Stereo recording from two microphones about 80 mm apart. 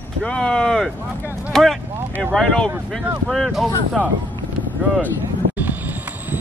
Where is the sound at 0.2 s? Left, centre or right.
Centre.